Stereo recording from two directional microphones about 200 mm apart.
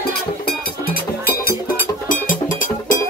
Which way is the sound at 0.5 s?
50° left (ahead or behind).